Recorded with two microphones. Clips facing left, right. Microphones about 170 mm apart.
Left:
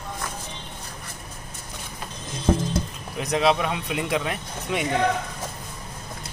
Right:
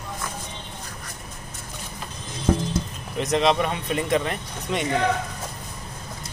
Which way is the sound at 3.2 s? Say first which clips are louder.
Right 1 dB; centre (ahead or behind).